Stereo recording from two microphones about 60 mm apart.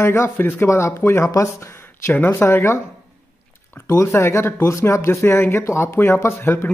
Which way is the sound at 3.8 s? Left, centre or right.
Left.